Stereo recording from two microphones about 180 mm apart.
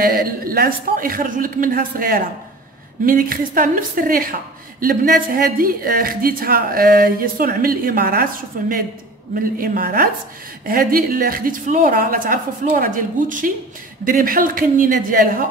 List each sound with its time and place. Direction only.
0.0 s a woman's voice: 55° right (ahead or behind)